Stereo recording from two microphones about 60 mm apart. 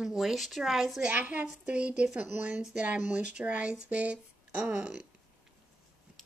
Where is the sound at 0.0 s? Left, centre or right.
Centre.